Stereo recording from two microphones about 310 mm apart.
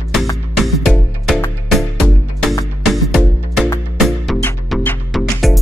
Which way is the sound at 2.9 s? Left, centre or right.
Centre.